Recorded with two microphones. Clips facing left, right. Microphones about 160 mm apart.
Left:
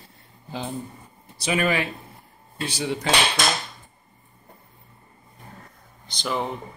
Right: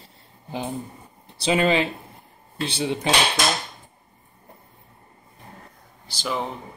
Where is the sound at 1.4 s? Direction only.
25° right (ahead or behind).